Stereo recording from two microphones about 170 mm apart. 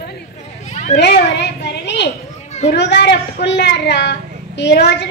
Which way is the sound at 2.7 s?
90° left.